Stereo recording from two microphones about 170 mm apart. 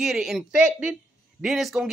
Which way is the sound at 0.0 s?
5° right (ahead or behind).